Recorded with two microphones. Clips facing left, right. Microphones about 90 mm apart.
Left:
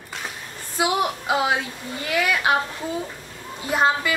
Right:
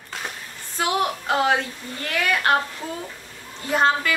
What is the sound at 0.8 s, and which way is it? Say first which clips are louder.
A woman's voice: left 1 dB; 10° left (ahead or behind).